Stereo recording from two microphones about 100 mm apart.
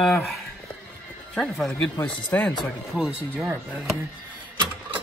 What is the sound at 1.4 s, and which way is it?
Speech, 5° left (ahead or behind).